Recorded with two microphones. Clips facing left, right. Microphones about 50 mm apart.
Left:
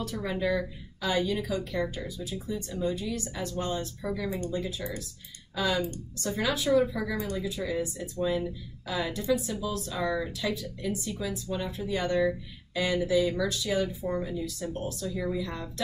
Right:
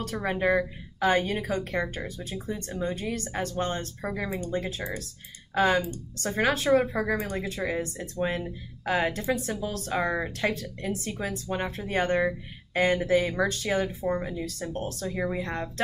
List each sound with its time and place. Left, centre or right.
0.0 s speech: right